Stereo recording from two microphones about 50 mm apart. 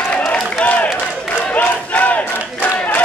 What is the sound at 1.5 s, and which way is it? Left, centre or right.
Battle cry, left.